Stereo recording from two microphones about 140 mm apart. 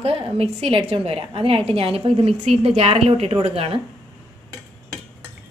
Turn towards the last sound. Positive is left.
turn(degrees=-45)  # may be behind; listen again after turning